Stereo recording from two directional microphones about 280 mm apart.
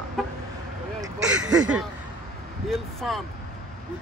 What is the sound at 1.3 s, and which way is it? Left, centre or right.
Speech, right.